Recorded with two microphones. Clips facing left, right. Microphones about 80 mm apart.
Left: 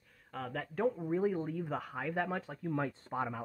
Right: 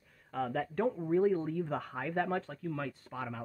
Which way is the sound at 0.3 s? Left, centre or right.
Centre.